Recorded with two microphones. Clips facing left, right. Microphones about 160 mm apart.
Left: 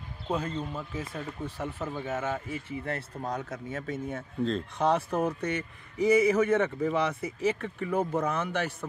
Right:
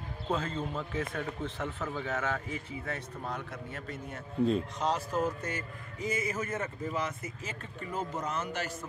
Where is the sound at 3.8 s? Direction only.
90° left.